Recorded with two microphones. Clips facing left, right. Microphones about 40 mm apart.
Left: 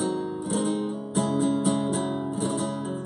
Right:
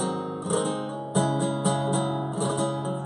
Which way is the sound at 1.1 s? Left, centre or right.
Centre.